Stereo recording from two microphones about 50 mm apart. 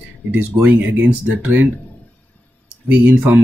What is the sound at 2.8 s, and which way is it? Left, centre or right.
Speech, right.